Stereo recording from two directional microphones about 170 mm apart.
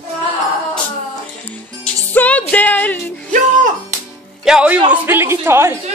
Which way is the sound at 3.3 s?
45° right (ahead or behind).